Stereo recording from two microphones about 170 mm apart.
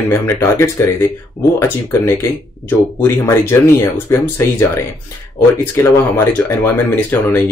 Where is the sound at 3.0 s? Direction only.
15° left (ahead or behind).